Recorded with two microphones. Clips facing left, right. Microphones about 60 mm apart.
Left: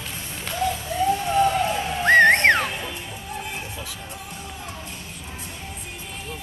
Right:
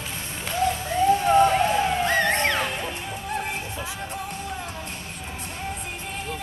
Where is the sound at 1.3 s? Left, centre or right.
Right.